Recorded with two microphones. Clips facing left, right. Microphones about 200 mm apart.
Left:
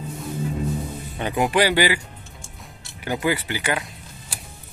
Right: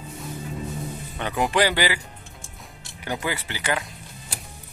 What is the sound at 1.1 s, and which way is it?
Speech, 20° left (ahead or behind).